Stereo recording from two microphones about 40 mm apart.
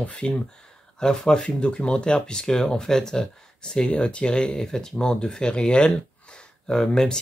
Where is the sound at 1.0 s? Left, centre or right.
Centre.